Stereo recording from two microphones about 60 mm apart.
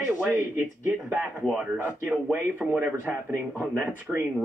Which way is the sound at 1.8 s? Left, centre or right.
Right.